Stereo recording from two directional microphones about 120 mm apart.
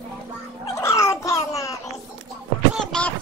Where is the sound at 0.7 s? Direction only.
25° left (ahead or behind).